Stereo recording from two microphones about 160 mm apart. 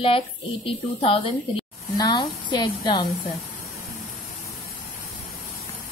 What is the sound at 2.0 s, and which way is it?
A woman's voice, 25° left (ahead or behind).